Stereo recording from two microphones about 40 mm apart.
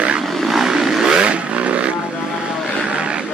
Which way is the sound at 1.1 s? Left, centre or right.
Right.